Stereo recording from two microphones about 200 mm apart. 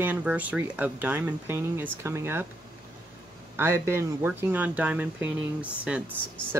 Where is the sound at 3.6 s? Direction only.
10° right (ahead or behind).